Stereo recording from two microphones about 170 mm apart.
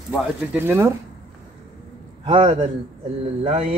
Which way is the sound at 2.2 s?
30° right (ahead or behind).